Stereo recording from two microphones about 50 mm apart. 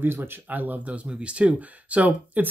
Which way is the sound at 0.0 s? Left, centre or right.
Right.